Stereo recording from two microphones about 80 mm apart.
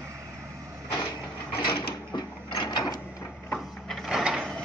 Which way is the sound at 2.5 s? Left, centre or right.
Left.